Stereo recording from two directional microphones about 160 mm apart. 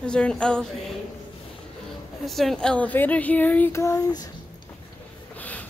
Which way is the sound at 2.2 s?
Centre (ahead or behind).